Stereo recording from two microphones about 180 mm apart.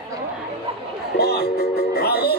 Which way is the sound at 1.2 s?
60° left (ahead or behind).